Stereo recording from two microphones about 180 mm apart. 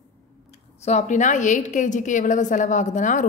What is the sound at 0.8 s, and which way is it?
A woman's voice, 40° left (ahead or behind).